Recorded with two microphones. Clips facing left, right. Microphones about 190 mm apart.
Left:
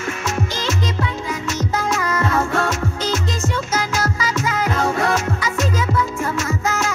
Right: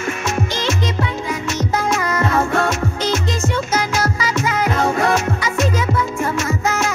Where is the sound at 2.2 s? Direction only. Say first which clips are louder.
Right 2 dB; 15° right (ahead or behind).